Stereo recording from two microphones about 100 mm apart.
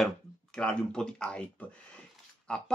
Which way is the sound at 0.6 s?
10° left (ahead or behind).